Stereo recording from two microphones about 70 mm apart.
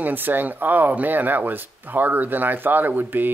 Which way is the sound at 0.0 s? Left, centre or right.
Right.